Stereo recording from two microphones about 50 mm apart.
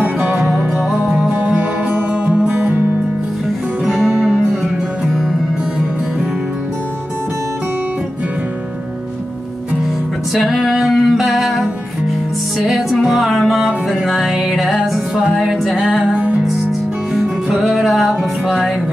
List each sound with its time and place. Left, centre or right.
0.0 s music: right
0.7 s music: centre
1.4 s music: right
3.8 s music: centre
10.3 s music: centre
16.2 s music: right
17.1 s music: centre